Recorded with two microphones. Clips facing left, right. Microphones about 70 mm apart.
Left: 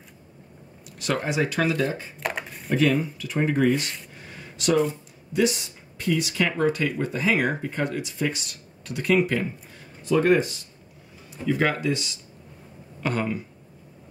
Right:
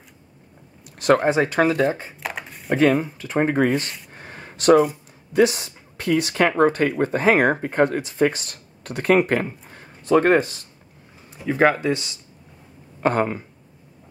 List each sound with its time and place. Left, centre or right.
0.9 s speech: right
2.1 s a sound: centre
3.0 s speech: right
4.1 s a sound: right
5.3 s speech: right
11.4 s speech: right